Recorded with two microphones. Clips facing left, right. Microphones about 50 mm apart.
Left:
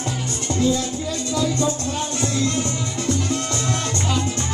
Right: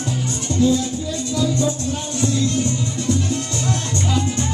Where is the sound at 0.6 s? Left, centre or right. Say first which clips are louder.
Right 3 dB; left.